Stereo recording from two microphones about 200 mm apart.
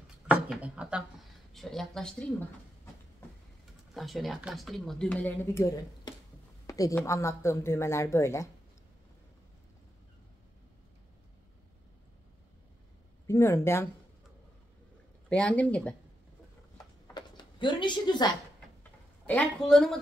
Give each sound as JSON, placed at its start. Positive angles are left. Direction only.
{"t": 0.3, "sound": "a sound", "side_deg": -5}
{"t": 1.5, "sound": "speech", "side_deg": 0}
{"t": 3.9, "sound": "speech", "side_deg": 0}
{"t": 13.3, "sound": "speech", "side_deg": 15}
{"t": 15.2, "sound": "speech", "side_deg": 5}
{"t": 16.7, "sound": "a sound", "side_deg": 20}
{"t": 19.2, "sound": "speech", "side_deg": 5}